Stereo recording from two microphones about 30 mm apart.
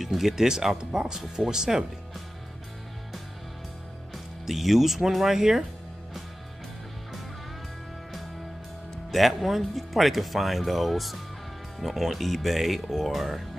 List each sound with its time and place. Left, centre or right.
0.0 s speech: centre
4.5 s speech: centre
9.1 s speech: centre